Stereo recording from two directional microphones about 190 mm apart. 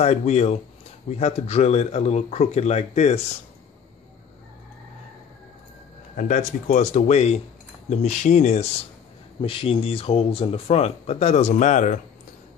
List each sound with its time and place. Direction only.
0.0 s speech: 35° left (ahead or behind)
6.1 s speech: 40° left (ahead or behind)